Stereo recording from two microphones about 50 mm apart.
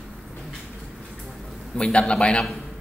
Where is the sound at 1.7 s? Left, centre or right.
Centre.